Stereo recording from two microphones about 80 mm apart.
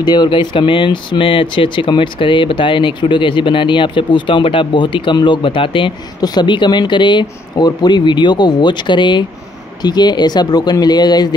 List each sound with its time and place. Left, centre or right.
0.0 s speech: left
9.8 s speech: left